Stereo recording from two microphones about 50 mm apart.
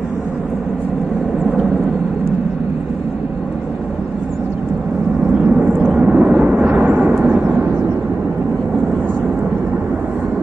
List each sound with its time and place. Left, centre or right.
5.4 s vehicle: right